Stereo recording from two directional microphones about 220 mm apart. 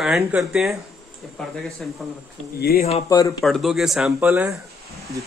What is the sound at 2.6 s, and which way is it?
Speech, 45° left (ahead or behind).